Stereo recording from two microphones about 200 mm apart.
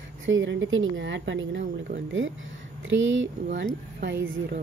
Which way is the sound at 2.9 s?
70° right (ahead or behind).